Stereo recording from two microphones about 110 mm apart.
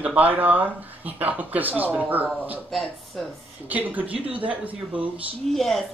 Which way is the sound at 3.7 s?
15° right (ahead or behind).